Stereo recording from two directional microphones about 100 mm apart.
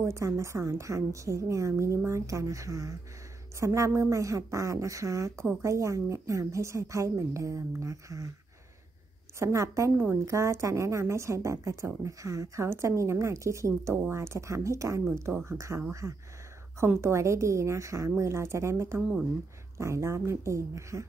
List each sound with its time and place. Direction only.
0.0 s a woman's voice: 30° right (ahead or behind)
9.4 s a woman's voice: 30° right (ahead or behind)